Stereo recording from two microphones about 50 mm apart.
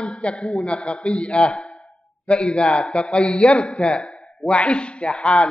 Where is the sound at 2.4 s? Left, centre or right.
Centre.